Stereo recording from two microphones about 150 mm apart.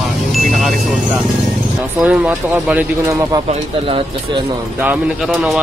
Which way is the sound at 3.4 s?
35° right (ahead or behind).